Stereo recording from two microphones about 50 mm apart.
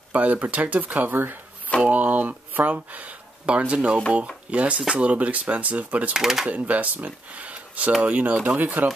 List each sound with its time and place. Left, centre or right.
0.1 s speech: right
1.1 s speech: right
1.8 s speech: right
6.1 s speech: centre
6.5 s speech: right